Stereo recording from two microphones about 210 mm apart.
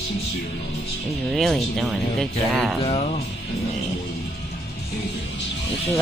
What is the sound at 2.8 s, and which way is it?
Speech, 30° left (ahead or behind).